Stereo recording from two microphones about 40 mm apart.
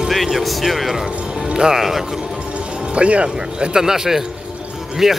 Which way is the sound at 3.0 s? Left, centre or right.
Right.